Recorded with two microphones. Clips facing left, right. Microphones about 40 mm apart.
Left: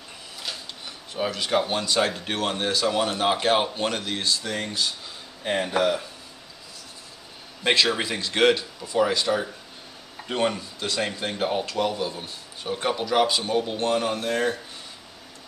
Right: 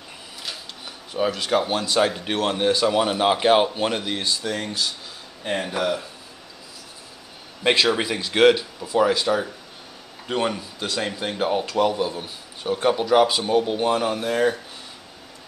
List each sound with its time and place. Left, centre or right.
0.4 s speech: centre
4.5 s speech: centre
7.6 s speech: centre